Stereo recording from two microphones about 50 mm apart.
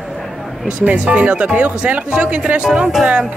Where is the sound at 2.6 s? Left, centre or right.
Centre.